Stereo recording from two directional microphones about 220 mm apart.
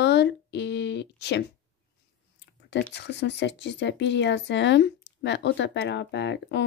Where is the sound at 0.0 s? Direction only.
50° left (ahead or behind).